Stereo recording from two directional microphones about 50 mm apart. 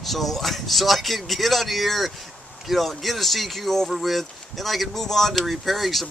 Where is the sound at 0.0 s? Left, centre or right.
Centre.